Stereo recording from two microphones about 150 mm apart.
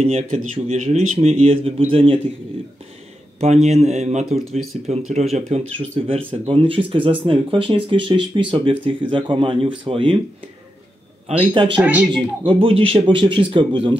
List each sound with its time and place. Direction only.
0.0 s speech: 45° right (ahead or behind)
3.3 s speech: 45° right (ahead or behind)
11.5 s speech: 35° right (ahead or behind)
11.8 s speech: 10° right (ahead or behind)
12.4 s speech: 40° right (ahead or behind)